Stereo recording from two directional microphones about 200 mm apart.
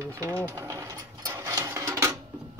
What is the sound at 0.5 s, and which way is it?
Sewing machine, 15° right (ahead or behind).